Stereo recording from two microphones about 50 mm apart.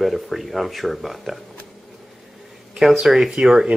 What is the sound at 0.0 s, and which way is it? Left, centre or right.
Speech, centre.